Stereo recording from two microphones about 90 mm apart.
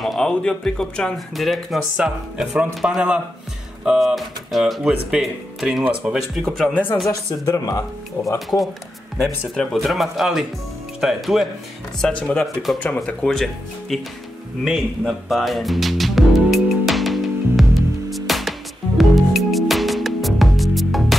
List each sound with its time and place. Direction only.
0.0 s speech: 5° left (ahead or behind)
6.3 s speech: 5° left (ahead or behind)
6.7 s speech: 20° left (ahead or behind)
7.1 s speech: 40° left (ahead or behind)
9.6 s speech: centre (ahead or behind)
12.0 s speech: 15° left (ahead or behind)
14.6 s music: centre (ahead or behind)